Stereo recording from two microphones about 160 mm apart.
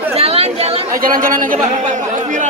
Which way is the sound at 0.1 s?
40° right (ahead or behind).